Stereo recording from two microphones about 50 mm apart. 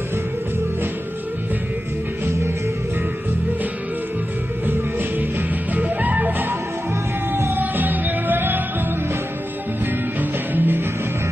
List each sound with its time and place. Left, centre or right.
2.2 s music: right
5.8 s music: right
7.5 s music: right
10.5 s music: right